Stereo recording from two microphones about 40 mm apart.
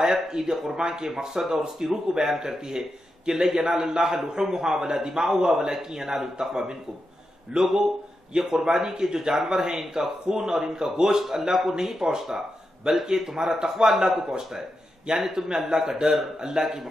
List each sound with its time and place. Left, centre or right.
0.0 s speech: centre